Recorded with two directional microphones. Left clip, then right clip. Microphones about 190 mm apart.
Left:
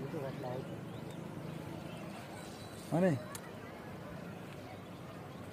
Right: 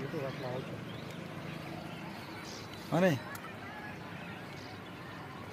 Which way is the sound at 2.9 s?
Centre (ahead or behind).